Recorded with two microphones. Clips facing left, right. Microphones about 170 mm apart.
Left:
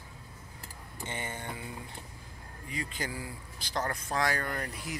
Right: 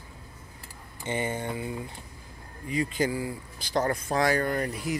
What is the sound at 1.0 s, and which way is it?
Speech, 15° right (ahead or behind).